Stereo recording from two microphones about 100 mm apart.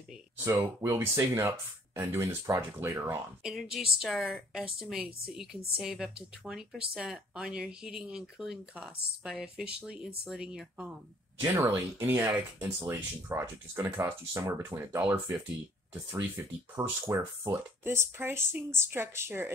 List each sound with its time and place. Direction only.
0.5 s speech: 25° right (ahead or behind)
3.4 s a woman's voice: 5° right (ahead or behind)
11.5 s speech: 25° right (ahead or behind)